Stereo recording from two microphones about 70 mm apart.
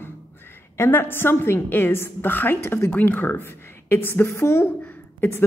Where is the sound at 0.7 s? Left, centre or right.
Left.